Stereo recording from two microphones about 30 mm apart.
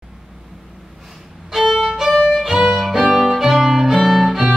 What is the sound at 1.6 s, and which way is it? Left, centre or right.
Violin, centre.